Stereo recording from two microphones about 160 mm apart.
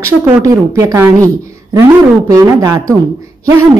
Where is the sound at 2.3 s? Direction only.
20° right (ahead or behind).